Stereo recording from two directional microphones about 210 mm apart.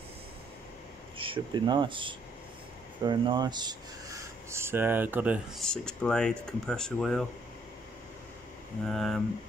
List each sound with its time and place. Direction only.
1.1 s speech: 25° right (ahead or behind); by 7.2 s centre (ahead or behind)
8.8 s speech: centre (ahead or behind)